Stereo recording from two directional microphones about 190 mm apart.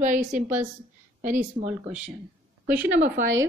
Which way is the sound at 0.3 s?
10° right (ahead or behind).